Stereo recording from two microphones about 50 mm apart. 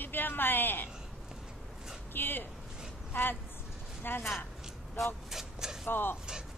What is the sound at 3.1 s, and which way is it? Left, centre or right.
Speech, left.